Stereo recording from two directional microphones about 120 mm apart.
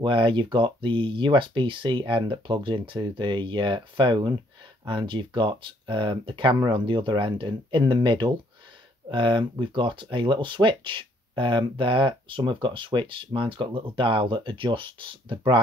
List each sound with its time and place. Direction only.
0.0 s speech: 45° right (ahead or behind)